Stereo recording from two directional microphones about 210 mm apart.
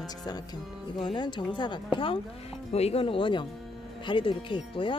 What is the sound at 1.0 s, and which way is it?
Speech, 20° left (ahead or behind).